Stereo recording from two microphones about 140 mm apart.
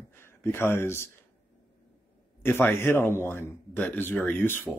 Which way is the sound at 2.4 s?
15° left (ahead or behind).